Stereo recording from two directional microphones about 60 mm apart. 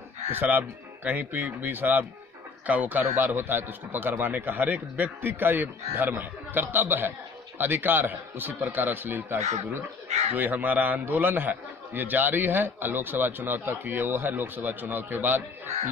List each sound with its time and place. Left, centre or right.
0.3 s a man's voice: right